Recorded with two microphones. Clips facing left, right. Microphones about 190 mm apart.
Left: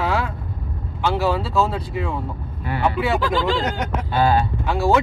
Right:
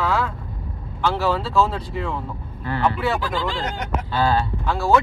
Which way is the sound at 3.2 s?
90° left.